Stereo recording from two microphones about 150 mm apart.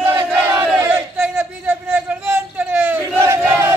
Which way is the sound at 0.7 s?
10° right (ahead or behind).